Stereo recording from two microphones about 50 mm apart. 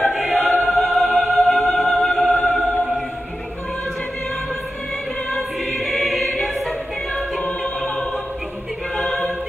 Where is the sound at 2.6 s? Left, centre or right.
Left.